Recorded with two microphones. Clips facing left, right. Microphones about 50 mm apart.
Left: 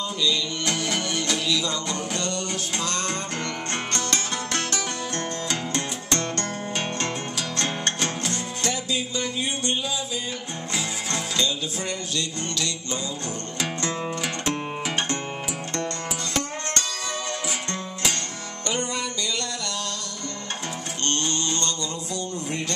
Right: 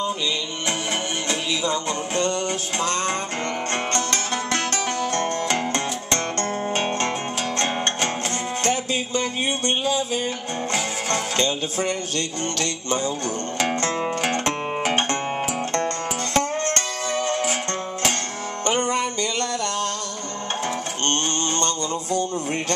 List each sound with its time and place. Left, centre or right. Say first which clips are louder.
0.0 s music: right 1 dB; right
16.3 s music: right 7 dB; right
18.7 s music: right 6 dB; right
21.0 s mantra: right 1 dB; right